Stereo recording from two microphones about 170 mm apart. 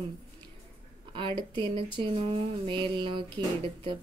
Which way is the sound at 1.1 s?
30° right (ahead or behind).